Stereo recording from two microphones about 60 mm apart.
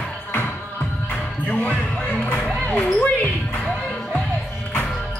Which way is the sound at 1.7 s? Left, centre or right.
Centre.